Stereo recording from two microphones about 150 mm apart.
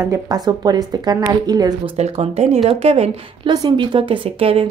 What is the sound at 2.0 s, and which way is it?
Speech, 45° right (ahead or behind).